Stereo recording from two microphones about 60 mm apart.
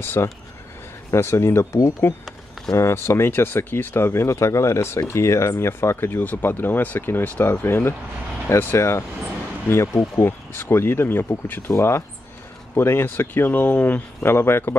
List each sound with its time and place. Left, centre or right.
0.0 s speech: left
7.6 s speech: left
11.7 s speech: left
14.2 s speech: left